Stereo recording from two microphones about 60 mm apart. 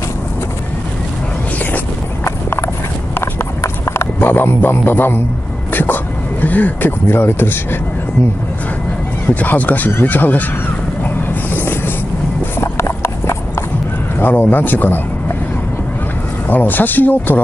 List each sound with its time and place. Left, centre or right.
3.6 s a sound: left
5.7 s vehicle: left
6.4 s speech: left
9.3 s speech: left
11.1 s boat: left
12.5 s clip-clop: left
14.2 s speech: left
16.4 s speech: left